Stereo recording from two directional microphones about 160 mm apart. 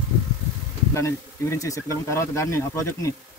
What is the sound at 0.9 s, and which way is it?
A man's voice, 15° left (ahead or behind).